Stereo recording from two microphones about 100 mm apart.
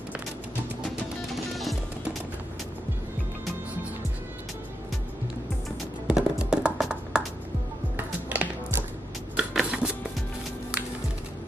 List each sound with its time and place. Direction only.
1.5 s music: centre (ahead or behind)
6.0 s music: 10° right (ahead or behind)
8.3 s music: 15° right (ahead or behind)
9.4 s a sound: 10° right (ahead or behind)